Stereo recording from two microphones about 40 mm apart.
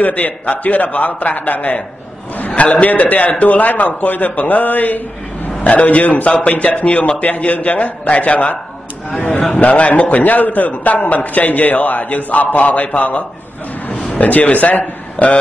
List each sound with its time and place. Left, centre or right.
0.0 s a man's voice: left